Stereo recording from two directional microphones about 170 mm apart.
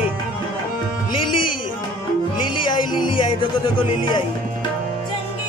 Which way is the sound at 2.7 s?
30° left (ahead or behind).